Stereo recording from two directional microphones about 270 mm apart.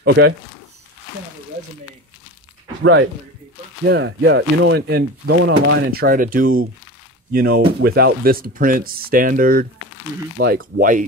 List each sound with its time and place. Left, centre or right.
0.0 s speech: right
2.8 s speech: right